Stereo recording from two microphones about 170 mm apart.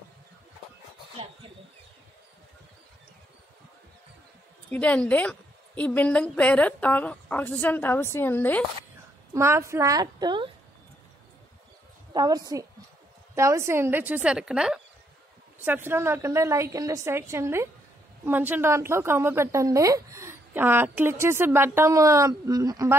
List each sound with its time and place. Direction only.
4.6 s a woman's voice: 10° left (ahead or behind)
9.3 s a woman's voice: 15° right (ahead or behind)
12.1 s a woman's voice: 25° right (ahead or behind)